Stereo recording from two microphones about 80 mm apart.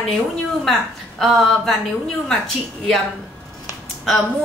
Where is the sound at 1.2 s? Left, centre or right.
Centre.